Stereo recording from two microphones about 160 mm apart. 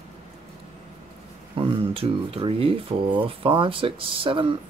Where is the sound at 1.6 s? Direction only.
35° right (ahead or behind).